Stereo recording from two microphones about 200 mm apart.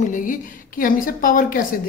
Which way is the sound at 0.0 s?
40° left (ahead or behind).